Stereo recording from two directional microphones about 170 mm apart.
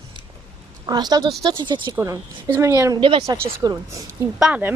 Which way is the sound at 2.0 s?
15° right (ahead or behind).